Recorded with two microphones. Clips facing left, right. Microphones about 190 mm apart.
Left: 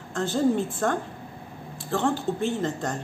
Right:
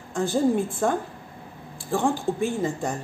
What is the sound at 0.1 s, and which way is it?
Speech, 10° right (ahead or behind).